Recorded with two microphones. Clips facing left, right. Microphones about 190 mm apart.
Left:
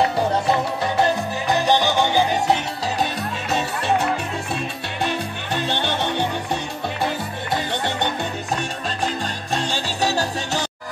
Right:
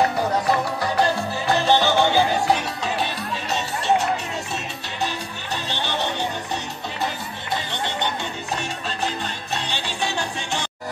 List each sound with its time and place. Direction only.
0.0 s music: 25° left (ahead or behind)
3.0 s music: 55° left (ahead or behind)
7.7 s music: 45° left (ahead or behind)
9.5 s music: 45° left (ahead or behind)